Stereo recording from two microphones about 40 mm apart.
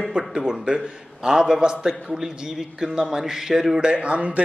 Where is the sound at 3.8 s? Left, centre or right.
Right.